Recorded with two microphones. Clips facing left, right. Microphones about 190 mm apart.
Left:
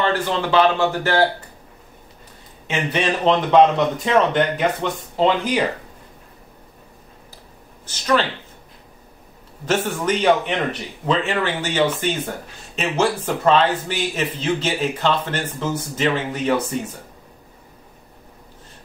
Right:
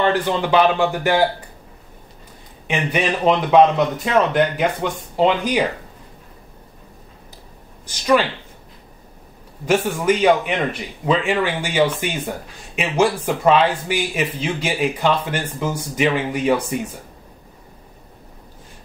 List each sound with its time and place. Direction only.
0.0 s speech: 15° right (ahead or behind)
2.7 s speech: 10° right (ahead or behind)
7.8 s speech: 10° right (ahead or behind)
9.7 s speech: 10° right (ahead or behind)